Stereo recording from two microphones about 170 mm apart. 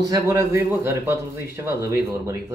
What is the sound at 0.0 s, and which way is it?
A man's voice, 20° right (ahead or behind).